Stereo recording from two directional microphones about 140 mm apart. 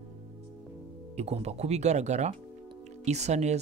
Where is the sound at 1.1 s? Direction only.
50° right (ahead or behind).